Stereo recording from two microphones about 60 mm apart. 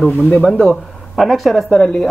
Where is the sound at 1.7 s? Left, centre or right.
Centre.